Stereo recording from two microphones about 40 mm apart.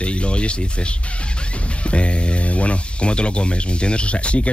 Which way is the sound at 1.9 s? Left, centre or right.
Left.